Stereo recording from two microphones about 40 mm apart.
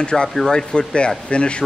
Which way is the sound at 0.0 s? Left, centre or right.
Left.